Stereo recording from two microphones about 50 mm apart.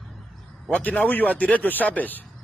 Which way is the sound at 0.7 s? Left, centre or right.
Left.